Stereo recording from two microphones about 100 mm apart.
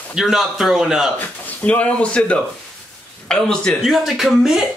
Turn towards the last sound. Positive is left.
turn(degrees=-5)  # may be behind; listen again after turning